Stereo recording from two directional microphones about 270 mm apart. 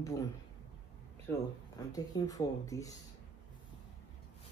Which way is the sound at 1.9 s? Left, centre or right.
Centre.